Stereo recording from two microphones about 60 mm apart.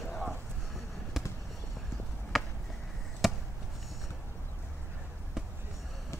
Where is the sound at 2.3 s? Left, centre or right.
Centre.